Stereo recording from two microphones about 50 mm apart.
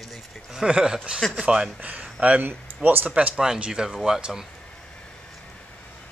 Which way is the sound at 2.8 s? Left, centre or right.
Right.